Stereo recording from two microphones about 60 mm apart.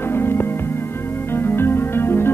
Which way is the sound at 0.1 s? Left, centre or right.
Left.